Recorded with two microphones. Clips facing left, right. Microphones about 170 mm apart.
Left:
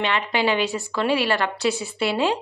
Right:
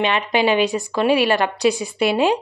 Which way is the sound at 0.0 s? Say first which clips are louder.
Right 4 dB; 15° right (ahead or behind).